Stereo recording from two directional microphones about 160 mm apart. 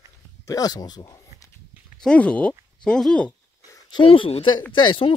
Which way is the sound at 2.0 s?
10° left (ahead or behind).